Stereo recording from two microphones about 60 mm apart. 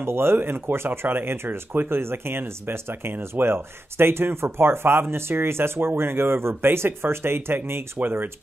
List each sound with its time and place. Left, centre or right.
0.0 s speech: right